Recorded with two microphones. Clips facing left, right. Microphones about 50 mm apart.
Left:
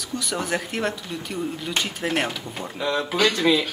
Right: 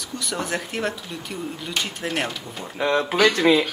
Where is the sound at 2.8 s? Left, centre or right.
Right.